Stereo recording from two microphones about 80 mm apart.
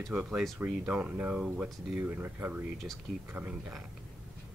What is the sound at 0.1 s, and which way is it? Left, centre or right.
Speech, centre.